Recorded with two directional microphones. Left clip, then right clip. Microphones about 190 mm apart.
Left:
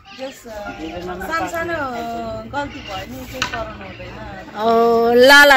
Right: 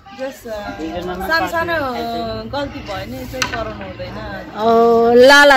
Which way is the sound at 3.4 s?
55° left (ahead or behind).